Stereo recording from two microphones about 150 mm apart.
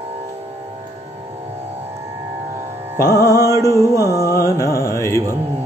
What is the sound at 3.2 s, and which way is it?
Music, 20° left (ahead or behind).